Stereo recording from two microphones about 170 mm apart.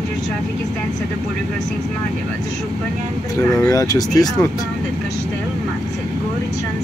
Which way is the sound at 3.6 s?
20° left (ahead or behind).